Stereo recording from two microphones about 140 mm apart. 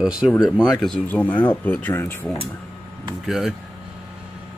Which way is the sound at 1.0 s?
10° left (ahead or behind).